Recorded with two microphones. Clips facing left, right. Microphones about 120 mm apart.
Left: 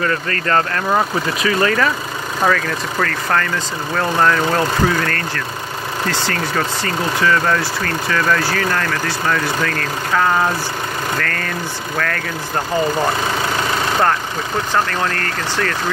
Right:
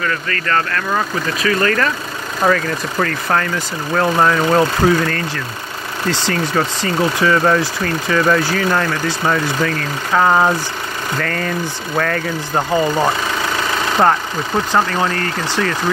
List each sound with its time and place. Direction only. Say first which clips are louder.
0.0 s speech: left 1 dB; 30° left (ahead or behind); by 1.9 s 15° left (ahead or behind)
2.4 s speech: right 2 dB; 10° right (ahead or behind)
10.1 s speech: right 3 dB; 25° right (ahead or behind)
14.9 s speech: right 2 dB; 10° right (ahead or behind)